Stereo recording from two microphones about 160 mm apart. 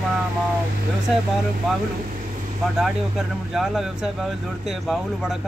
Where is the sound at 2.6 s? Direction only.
Centre (ahead or behind).